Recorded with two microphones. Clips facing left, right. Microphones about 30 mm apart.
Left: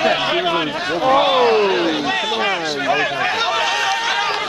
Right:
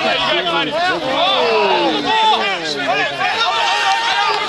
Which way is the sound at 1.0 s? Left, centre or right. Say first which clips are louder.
Left 6 dB; centre.